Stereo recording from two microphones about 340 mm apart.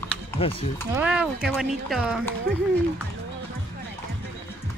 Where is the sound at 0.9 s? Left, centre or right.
Centre.